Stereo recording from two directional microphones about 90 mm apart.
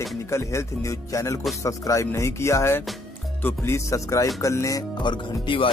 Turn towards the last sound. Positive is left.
turn(degrees=70)  # may be behind; listen again after turning